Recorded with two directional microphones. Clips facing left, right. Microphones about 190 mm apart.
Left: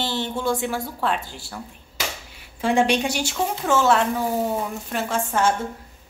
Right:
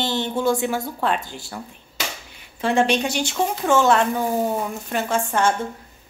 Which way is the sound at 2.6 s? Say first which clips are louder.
Even; 10° left (ahead or behind).